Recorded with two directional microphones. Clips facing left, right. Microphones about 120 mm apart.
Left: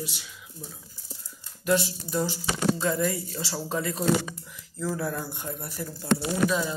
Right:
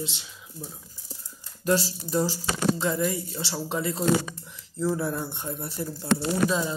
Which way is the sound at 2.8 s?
20° right (ahead or behind).